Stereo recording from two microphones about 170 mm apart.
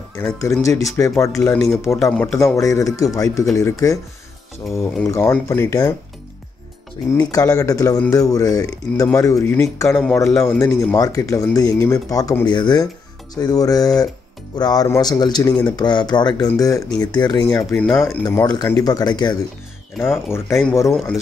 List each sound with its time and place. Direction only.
0.4 s speech: 20° left (ahead or behind)
5.0 s speech: 15° left (ahead or behind)
7.1 s speech: 20° left (ahead or behind)
17.7 s speech: 5° left (ahead or behind)
18.0 s speech: 15° left (ahead or behind)